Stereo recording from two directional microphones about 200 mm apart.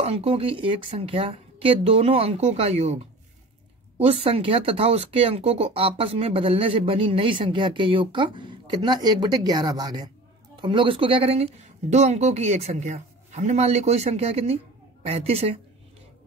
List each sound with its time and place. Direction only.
0.0 s speech: 30° right (ahead or behind)
4.0 s a woman's voice: 30° right (ahead or behind)